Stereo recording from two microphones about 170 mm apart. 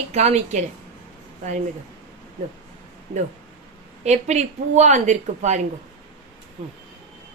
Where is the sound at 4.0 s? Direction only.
45° right (ahead or behind).